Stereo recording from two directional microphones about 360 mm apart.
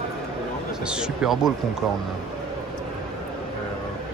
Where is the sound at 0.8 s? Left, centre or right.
Centre.